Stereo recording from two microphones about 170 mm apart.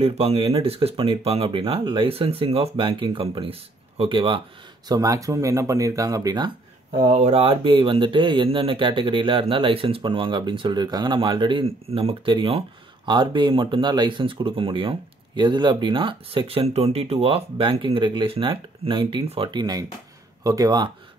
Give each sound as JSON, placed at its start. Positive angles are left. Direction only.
{"t": 0.0, "sound": "speech", "side_deg": -35}
{"t": 7.2, "sound": "speech", "side_deg": -35}